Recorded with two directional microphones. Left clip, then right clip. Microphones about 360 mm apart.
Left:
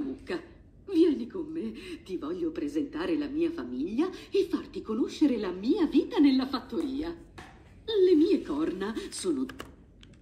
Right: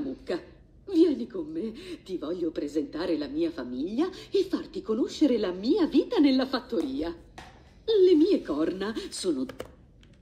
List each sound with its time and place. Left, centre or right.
0.8 s a sound: centre
1.3 s speech: centre
1.7 s speech: centre
5.3 s speech: centre
5.6 s speech: centre